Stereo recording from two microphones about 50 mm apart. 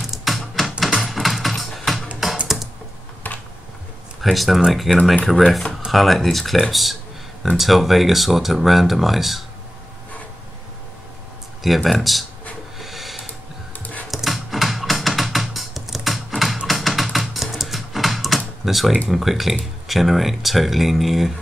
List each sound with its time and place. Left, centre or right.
0.0 s typing: centre
0.7 s a sound: centre
2.4 s typing: centre
3.3 s computer keyboard: left
4.2 s speech: centre
11.6 s speech: centre
12.7 s a sound: centre
13.3 s a sound: left
14.1 s music: centre
16.6 s typing: centre
18.6 s speech: centre